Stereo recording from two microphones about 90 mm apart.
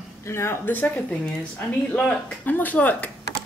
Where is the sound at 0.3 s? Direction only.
30° left (ahead or behind).